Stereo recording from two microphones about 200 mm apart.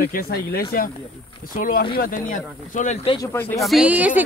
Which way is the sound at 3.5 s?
Centre (ahead or behind).